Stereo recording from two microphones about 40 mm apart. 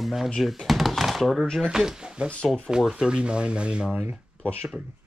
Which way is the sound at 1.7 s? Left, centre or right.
Centre.